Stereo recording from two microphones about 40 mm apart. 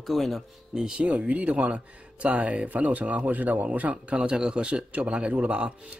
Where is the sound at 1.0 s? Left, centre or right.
Right.